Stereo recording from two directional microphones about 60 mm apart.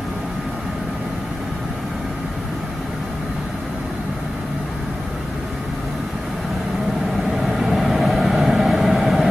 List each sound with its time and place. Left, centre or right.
7.4 s vehicle: centre